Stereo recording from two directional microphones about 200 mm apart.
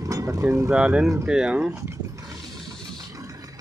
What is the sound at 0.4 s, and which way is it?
Speech, 10° right (ahead or behind).